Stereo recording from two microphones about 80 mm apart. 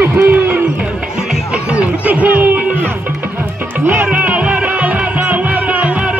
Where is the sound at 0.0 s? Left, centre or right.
Right.